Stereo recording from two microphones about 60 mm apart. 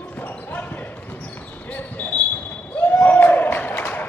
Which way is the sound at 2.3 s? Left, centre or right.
Left.